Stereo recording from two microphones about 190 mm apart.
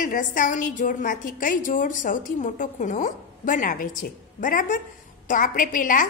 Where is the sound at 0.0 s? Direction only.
45° left (ahead or behind).